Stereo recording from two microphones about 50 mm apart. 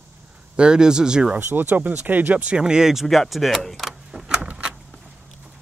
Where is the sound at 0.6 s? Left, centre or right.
Centre.